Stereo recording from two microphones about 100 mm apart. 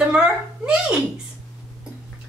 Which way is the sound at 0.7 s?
5° right (ahead or behind).